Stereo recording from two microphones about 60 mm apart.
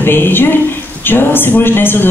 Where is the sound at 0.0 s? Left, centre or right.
Left.